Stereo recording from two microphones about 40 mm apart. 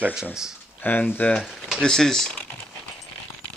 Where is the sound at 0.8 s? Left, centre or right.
Left.